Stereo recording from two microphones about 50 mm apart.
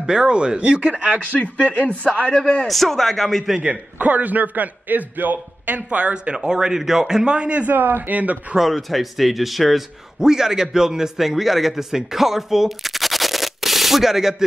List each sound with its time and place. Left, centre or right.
0.0 s a man's voice: centre
1.3 s speech: left
2.6 s speech: centre
4.0 s a man's voice: right
7.6 s a man's voice: right
8.5 s speech: centre
10.2 s a man's voice: centre